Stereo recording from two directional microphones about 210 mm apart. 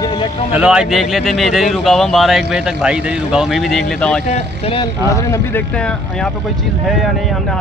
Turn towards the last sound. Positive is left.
turn(degrees=0)  # may be behind; listen again after turning